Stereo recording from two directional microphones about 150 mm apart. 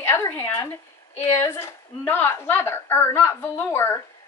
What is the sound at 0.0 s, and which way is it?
A woman's voice, 15° left (ahead or behind).